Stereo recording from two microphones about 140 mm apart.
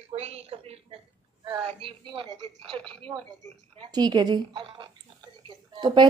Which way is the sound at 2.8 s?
5° left (ahead or behind).